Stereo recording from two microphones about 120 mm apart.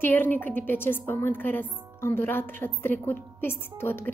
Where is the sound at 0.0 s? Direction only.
15° left (ahead or behind).